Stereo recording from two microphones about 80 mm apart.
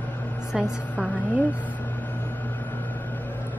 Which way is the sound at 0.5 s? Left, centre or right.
Centre.